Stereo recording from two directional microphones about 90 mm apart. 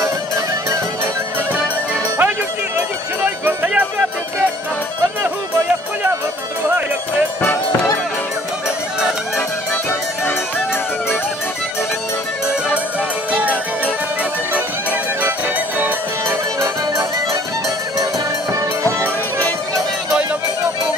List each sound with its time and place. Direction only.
3.3 s music: 20° right (ahead or behind)
7.4 s music: 25° left (ahead or behind)
13.3 s music: 15° right (ahead or behind); by 17.4 s 35° right (ahead or behind)
18.5 s music: 30° right (ahead or behind)